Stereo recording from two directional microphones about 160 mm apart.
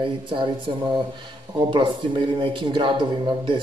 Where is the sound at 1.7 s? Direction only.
30° right (ahead or behind).